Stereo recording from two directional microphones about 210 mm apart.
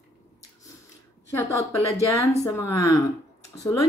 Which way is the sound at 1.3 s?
10° left (ahead or behind).